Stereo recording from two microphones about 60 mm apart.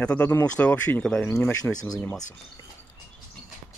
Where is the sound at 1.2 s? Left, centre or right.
Left.